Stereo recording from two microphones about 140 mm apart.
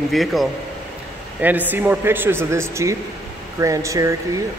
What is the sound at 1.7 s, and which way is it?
A man's voice, 10° right (ahead or behind).